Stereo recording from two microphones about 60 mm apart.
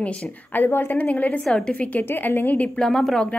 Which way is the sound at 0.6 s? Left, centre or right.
Left.